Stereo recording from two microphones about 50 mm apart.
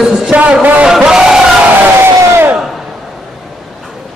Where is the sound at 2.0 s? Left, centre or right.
Right.